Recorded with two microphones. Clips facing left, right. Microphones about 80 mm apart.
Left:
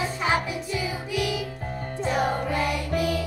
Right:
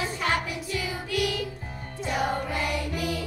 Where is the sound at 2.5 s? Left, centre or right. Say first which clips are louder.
Left 3 dB; left.